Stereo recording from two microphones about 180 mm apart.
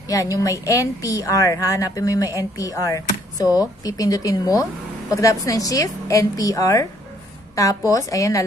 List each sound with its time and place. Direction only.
0.1 s a woman's voice: 20° left (ahead or behind)